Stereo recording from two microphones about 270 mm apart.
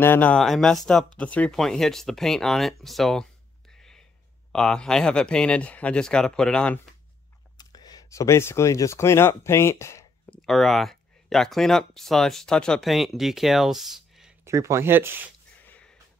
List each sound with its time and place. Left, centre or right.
0.0 s speech: centre
4.5 s speech: centre
7.5 s speech: centre